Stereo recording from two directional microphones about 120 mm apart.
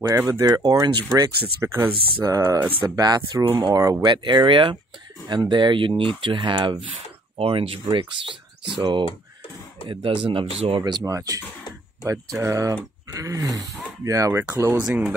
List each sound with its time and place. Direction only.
0.2 s speech: 30° right (ahead or behind)
2.2 s speech: 30° right (ahead or behind)
4.1 s speech: 40° right (ahead or behind)
10.8 s speech: 25° right (ahead or behind)